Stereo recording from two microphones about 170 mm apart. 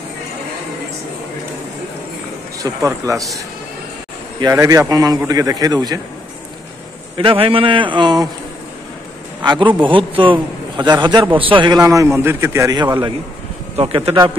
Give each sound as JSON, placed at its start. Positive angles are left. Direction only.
{"t": 2.6, "sound": "a man's voice", "side_deg": -20}
{"t": 4.4, "sound": "a man's voice", "side_deg": -20}
{"t": 7.2, "sound": "a man's voice", "side_deg": -35}
{"t": 9.4, "sound": "a man's voice", "side_deg": -25}